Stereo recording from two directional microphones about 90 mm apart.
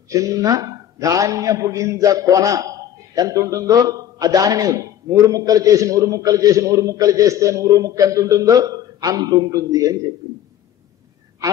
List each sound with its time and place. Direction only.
0.1 s a man's voice: 40° right (ahead or behind)